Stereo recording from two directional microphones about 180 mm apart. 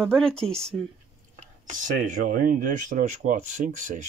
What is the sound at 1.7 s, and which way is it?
Speech, 45° right (ahead or behind).